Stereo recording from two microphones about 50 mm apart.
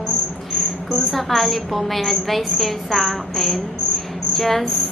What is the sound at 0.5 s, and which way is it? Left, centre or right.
A woman's voice, centre.